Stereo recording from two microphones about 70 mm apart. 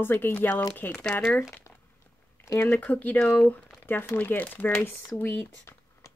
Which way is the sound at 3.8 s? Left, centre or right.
Left.